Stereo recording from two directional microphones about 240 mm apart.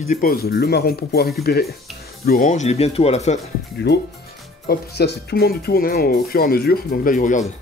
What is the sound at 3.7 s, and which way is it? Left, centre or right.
Speech, left.